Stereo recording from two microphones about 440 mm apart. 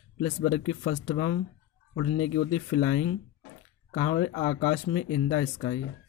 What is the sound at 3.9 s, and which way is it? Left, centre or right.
Speech, centre.